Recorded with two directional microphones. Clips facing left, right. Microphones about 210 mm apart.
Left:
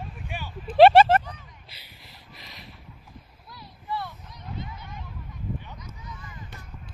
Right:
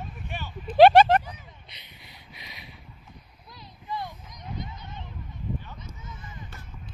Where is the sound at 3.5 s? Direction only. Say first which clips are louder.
Left 2 dB; 20° right (ahead or behind).